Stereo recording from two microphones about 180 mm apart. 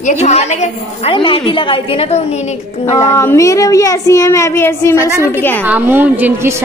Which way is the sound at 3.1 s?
15° left (ahead or behind).